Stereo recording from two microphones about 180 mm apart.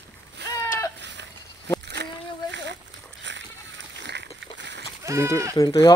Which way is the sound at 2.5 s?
80° right.